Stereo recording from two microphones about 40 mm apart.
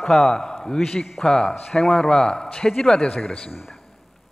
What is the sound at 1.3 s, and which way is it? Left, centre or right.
A man's voice, centre.